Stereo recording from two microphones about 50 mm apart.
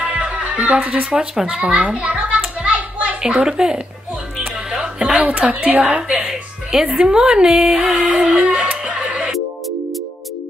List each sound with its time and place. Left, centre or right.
0.0 s music: right
1.1 s speech: centre
1.8 s a sound: right
3.3 s speech: centre
4.6 s music: centre
5.1 s a woman's voice: right
5.9 s speech: centre
8.0 s music: right